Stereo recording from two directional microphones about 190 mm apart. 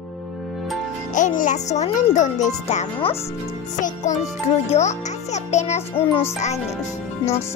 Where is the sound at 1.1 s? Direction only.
45° left (ahead or behind).